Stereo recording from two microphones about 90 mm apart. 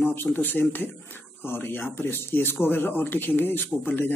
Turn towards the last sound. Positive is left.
turn(degrees=25)  # may be behind; listen again after turning